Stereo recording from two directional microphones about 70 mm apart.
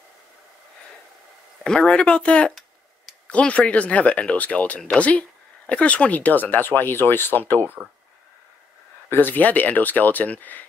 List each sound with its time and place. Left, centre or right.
1.6 s speech: centre; by 7.5 s left
7.6 s speech: right
9.1 s speech: left